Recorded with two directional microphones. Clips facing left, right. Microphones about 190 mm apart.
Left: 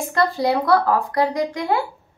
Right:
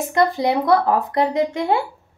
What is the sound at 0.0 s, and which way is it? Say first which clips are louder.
Speech: right 2 dB; 20° right (ahead or behind).